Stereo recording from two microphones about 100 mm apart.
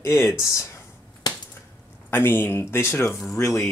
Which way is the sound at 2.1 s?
20° left (ahead or behind).